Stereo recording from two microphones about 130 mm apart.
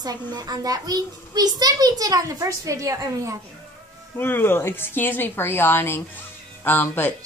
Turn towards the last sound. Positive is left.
turn(degrees=15)  # may be behind; listen again after turning